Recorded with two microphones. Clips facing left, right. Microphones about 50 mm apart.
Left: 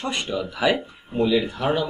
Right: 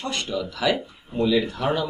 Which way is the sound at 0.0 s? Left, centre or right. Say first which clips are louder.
Left 1 dB; left.